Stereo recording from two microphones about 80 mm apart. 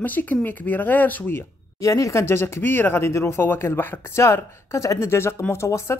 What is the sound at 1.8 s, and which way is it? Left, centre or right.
Speech, left.